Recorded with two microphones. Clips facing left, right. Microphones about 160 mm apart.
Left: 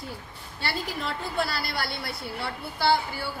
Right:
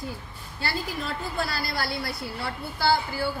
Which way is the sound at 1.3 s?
30° left (ahead or behind).